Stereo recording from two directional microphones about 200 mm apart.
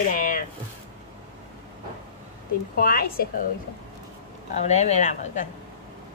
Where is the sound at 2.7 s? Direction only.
50° left (ahead or behind).